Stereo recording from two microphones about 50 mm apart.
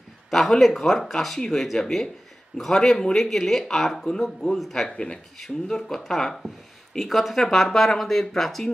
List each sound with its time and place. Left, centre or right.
0.3 s speech: centre
5.4 s speech: centre